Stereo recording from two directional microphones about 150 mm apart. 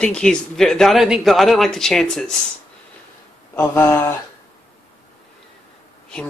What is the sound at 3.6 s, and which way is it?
Speech, 15° left (ahead or behind).